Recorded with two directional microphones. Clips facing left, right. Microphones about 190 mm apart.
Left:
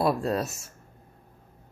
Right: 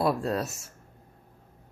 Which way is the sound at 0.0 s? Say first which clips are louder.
Left 1 dB; 15° left (ahead or behind).